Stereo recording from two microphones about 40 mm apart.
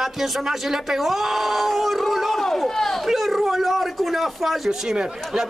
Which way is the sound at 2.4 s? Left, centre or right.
Centre.